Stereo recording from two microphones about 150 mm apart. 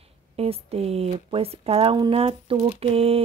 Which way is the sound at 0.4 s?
40° right (ahead or behind).